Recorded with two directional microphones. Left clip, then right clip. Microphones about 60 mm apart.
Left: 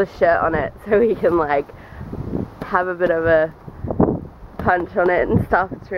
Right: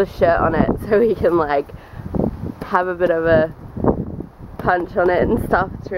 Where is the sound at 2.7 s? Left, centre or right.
Right.